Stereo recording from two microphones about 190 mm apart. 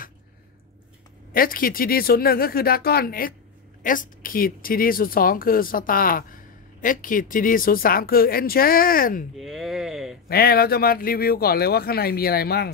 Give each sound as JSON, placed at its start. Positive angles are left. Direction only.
{"t": 1.3, "sound": "speech", "side_deg": 50}
{"t": 9.4, "sound": "a sound", "side_deg": 0}
{"t": 10.2, "sound": "speech", "side_deg": 55}